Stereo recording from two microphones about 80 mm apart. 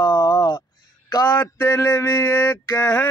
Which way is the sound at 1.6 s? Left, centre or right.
Left.